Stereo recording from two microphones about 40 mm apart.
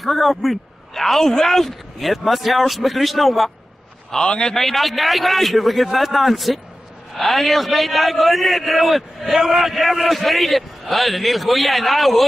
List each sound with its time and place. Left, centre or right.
0.0 s a man's voice: centre
4.1 s a man's voice: centre
4.6 s a man's voice: centre